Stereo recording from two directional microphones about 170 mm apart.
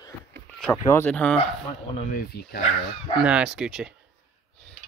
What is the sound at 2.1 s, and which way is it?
Speech, 60° left (ahead or behind).